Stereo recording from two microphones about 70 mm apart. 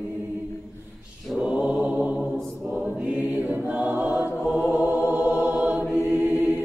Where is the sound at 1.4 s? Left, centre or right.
Centre.